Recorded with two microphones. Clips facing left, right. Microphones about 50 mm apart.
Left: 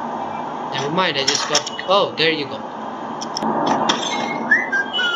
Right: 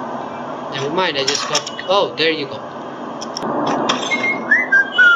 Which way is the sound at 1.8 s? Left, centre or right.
Centre.